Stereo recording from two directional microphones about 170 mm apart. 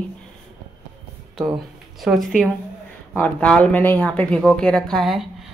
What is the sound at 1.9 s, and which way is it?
Speech, centre (ahead or behind).